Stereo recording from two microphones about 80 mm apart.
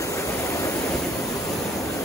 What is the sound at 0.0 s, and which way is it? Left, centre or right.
Waves, left.